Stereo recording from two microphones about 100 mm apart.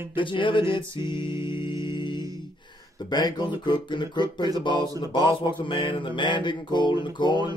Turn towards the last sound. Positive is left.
turn(degrees=50)  # may be behind; listen again after turning